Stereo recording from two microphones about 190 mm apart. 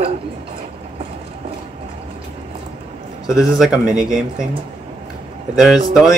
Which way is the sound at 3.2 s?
Centre (ahead or behind).